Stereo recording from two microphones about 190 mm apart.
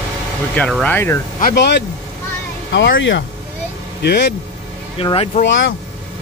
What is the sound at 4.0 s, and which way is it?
Speech, 65° left (ahead or behind).